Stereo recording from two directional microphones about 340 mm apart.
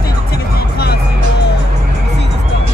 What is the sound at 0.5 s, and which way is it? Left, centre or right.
Music, left.